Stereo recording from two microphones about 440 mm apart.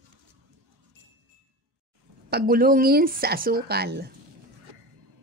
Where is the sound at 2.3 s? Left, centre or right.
Right.